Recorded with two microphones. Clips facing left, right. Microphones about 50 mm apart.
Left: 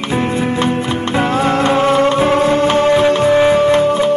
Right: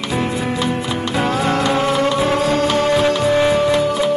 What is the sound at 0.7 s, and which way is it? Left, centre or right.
Music, left.